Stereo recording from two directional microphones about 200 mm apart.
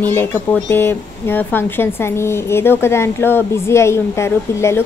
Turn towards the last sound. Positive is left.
turn(degrees=15)  # may be behind; listen again after turning